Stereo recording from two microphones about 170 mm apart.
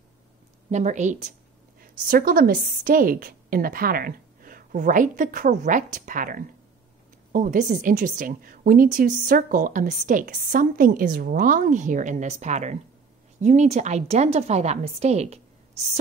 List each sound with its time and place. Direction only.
0.7 s a woman's voice: 45° right (ahead or behind)
1.8 s a woman's voice: 60° right (ahead or behind); by 15.4 s 40° right (ahead or behind)